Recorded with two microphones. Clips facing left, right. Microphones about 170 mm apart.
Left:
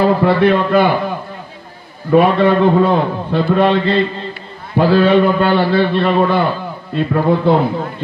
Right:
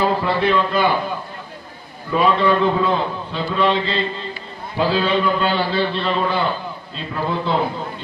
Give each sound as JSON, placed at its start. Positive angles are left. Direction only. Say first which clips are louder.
{"t": 0.0, "sound": "a man's voice", "louder": "left 7 dB", "side_deg": 55}